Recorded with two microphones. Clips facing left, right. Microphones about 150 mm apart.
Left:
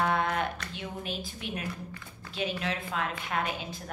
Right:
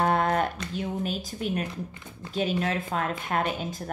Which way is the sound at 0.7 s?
40° right (ahead or behind).